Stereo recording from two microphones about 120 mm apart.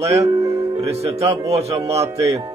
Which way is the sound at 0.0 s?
25° right (ahead or behind).